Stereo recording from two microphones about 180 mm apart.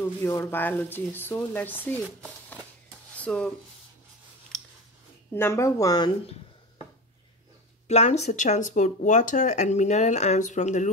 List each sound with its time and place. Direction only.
0.0 s speech: 15° left (ahead or behind)
5.3 s speech: 15° left (ahead or behind)
7.9 s speech: 40° left (ahead or behind)